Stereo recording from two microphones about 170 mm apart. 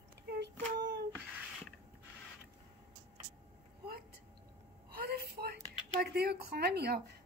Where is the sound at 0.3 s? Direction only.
80° right.